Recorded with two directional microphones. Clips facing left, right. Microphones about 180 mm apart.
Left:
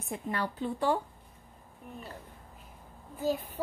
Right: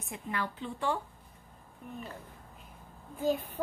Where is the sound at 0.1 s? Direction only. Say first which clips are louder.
Left 3 dB; 35° left (ahead or behind).